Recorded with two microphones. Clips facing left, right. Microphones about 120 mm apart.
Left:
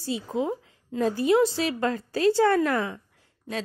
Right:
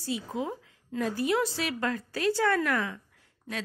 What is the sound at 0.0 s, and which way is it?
A woman's voice, 25° left (ahead or behind).